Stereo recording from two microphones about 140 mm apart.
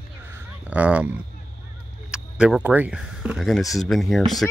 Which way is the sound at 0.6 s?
10° right (ahead or behind).